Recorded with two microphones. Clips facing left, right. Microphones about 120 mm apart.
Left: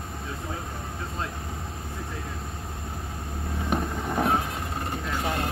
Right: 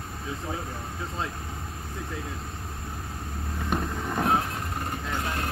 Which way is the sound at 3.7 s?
10° left (ahead or behind).